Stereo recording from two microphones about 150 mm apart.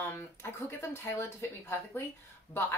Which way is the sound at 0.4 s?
15° left (ahead or behind).